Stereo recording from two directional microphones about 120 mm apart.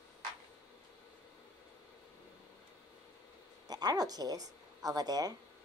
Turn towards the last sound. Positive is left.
turn(degrees=-30)  # may be behind; listen again after turning